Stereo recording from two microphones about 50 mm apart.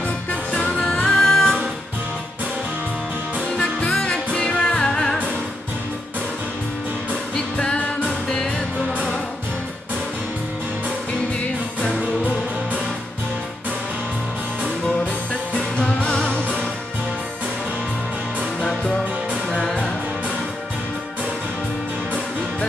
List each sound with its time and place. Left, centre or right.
0.3 s music: left
1.0 s music: centre
4.0 s music: centre
7.3 s music: centre
15.8 s music: centre
19.5 s music: centre